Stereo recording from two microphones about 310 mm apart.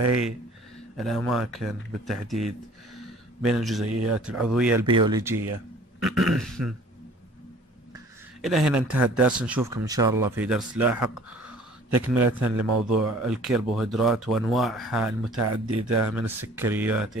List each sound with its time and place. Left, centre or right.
0.9 s speech: centre
3.8 s speech: right
4.3 s speech: centre
4.8 s speech: centre
8.4 s speech: centre
12.4 s speech: right
12.9 s speech: centre
15.3 s speech: right
16.1 s speech: centre